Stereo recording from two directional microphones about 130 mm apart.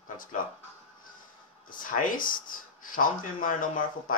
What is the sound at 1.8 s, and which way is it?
Speech, 90° left.